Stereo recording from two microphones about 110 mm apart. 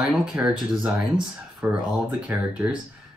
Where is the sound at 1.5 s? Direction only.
5° right (ahead or behind).